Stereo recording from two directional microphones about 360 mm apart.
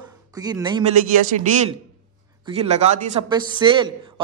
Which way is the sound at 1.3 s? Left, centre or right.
Right.